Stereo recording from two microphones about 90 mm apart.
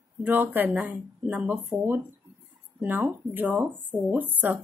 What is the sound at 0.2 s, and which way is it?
Speech, 20° right (ahead or behind).